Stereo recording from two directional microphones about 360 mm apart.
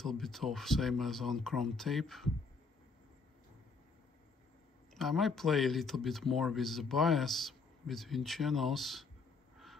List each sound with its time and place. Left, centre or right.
0.0 s speech: centre
4.9 s speech: centre